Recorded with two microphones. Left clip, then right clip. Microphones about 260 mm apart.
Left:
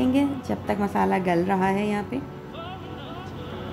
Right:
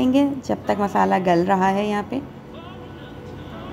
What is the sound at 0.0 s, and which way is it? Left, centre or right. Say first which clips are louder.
A woman's voice: right 4 dB; centre.